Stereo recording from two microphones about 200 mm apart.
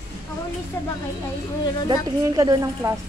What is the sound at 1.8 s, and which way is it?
Speech, 20° right (ahead or behind).